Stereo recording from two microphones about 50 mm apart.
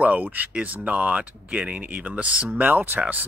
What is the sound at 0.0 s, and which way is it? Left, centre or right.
Speech, right.